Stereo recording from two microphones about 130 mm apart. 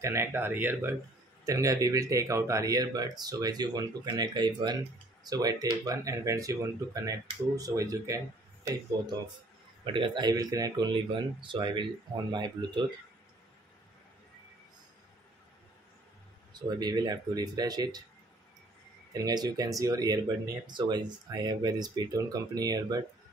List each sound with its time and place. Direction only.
0.0 s speech: 20° right (ahead or behind)
9.9 s speech: 35° right (ahead or behind)
16.5 s speech: 35° right (ahead or behind)
19.1 s speech: 30° right (ahead or behind)